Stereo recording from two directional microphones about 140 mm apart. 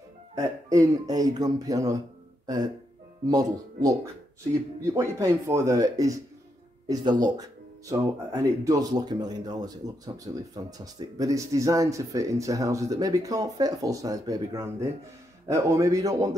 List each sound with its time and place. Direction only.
0.4 s speech: 25° right (ahead or behind)